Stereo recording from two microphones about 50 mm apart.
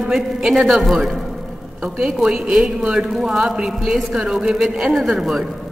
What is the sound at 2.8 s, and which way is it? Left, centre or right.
Speech, centre.